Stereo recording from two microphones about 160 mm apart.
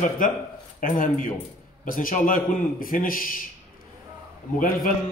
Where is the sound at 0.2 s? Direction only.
60° left (ahead or behind).